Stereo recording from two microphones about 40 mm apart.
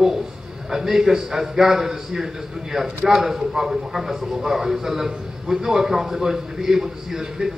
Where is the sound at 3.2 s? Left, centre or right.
Centre.